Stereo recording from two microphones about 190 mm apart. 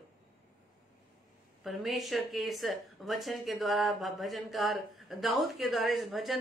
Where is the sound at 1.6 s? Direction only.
Centre (ahead or behind).